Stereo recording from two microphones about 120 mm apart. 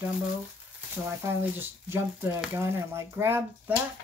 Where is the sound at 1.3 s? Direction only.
20° right (ahead or behind).